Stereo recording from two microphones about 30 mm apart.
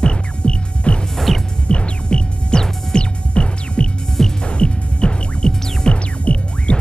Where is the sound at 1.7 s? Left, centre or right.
Left.